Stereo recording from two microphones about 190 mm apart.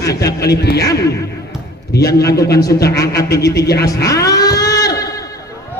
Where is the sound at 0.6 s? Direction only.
60° left (ahead or behind).